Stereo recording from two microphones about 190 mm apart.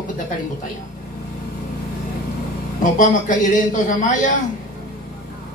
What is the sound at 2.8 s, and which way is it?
A man's voice, 45° left (ahead or behind).